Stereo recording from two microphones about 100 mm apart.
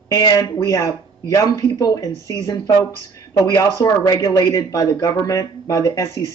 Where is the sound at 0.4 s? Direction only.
30° left (ahead or behind).